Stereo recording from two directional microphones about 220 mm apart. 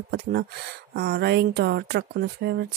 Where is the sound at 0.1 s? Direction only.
45° right (ahead or behind).